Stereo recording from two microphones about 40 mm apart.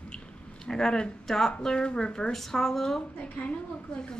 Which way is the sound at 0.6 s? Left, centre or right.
Centre.